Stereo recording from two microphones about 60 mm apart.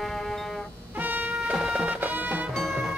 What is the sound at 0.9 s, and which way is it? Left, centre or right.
Music, right.